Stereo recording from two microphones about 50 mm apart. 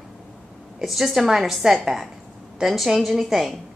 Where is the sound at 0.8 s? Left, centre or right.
Centre.